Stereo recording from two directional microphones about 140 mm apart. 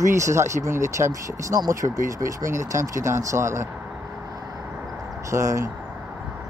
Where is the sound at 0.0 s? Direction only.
20° right (ahead or behind).